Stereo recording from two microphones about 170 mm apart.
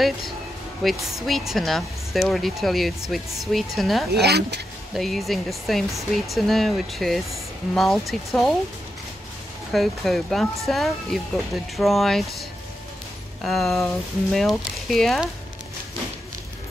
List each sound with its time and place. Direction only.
0.8 s speech: centre (ahead or behind)
4.2 s speech: 75° right (ahead or behind)
4.9 s speech: centre (ahead or behind)
9.7 s speech: centre (ahead or behind)